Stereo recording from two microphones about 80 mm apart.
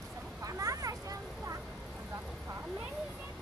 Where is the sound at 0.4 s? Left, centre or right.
Right.